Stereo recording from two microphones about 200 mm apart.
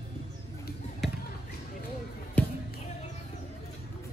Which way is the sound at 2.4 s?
5° left (ahead or behind).